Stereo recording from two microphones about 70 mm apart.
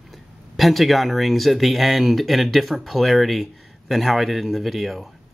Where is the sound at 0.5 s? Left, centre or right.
Centre.